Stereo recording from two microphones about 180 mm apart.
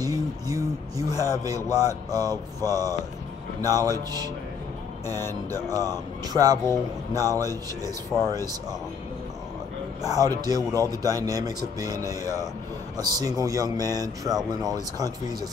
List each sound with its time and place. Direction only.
0.0 s a sound: 20° right (ahead or behind)
1.2 s speech: 20° right (ahead or behind)
5.2 s speech: 15° left (ahead or behind)
5.7 s speech: 20° right (ahead or behind)
10.0 s speech: 20° right (ahead or behind)